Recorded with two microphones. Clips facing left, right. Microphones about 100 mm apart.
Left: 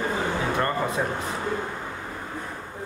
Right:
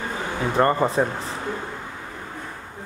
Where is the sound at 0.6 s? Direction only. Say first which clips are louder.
Right 11 dB; 30° right (ahead or behind).